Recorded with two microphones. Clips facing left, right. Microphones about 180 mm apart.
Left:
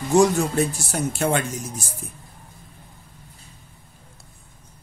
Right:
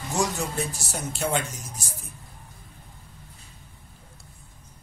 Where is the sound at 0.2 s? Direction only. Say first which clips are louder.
Left 6 dB; 60° left (ahead or behind).